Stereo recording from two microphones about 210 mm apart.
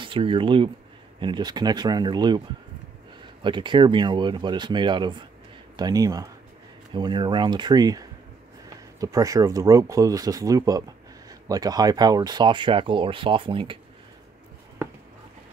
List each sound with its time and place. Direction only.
0.0 s speech: 25° right (ahead or behind)
3.4 s speech: 20° right (ahead or behind)